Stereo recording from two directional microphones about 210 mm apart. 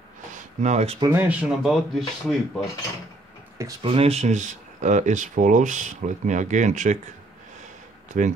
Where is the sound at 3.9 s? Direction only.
30° right (ahead or behind).